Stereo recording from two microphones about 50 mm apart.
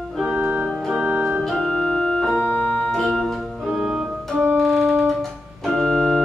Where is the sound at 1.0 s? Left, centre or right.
Right.